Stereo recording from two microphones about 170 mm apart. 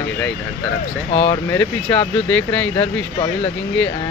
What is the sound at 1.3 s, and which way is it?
Speech, 15° left (ahead or behind).